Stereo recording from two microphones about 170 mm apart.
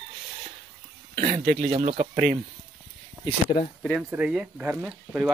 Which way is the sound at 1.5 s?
50° right (ahead or behind).